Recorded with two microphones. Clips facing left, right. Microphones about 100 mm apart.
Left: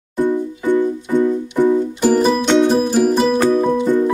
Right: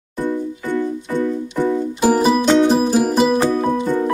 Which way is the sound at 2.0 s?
5° right (ahead or behind).